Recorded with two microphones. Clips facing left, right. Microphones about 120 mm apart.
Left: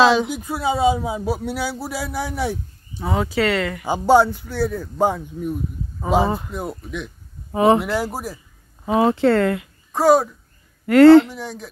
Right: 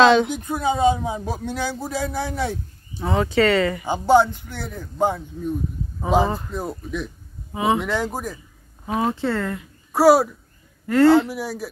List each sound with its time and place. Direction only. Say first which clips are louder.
0.0 s speech: right 1 dB; 5° left (ahead or behind)
3.8 s speech: left 3 dB; 15° left (ahead or behind)
4.4 s speech: left 10 dB; 15° right (ahead or behind)
4.9 s speech: right 2 dB; 15° left (ahead or behind)
5.9 s speech: left 1 dB; centre (ahead or behind)
7.5 s speech: left 6 dB; 55° left (ahead or behind)
7.8 s speech: left 1 dB; 10° left (ahead or behind)
8.8 s speech: left 6 dB; 90° left
9.9 s speech: right 1 dB; 5° right (ahead or behind)
10.9 s speech: left 6 dB; 90° left
11.2 s speech: right 4 dB; 5° right (ahead or behind)